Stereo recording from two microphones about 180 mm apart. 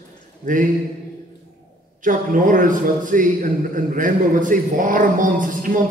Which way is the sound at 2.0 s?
50° right (ahead or behind).